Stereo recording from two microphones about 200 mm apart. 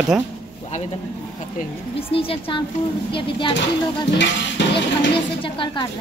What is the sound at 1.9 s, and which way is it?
Speech, 30° left (ahead or behind).